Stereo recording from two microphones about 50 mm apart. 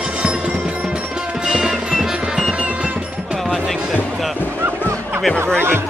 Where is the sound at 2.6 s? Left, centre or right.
Right.